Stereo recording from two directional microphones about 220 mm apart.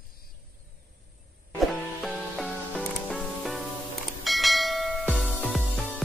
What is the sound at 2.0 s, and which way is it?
Music, centre (ahead or behind).